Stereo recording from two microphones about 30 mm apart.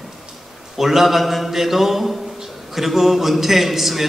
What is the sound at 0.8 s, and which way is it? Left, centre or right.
A man's voice, centre.